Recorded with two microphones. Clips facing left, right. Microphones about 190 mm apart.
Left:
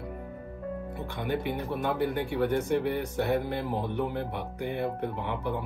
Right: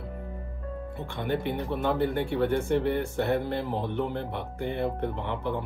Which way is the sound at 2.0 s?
5° left (ahead or behind).